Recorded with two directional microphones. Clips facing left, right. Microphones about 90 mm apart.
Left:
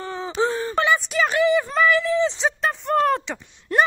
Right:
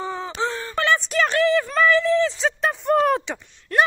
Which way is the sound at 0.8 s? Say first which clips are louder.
Right 3 dB; 5° left (ahead or behind).